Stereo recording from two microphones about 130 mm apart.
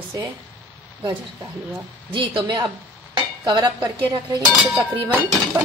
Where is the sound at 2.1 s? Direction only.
40° right (ahead or behind).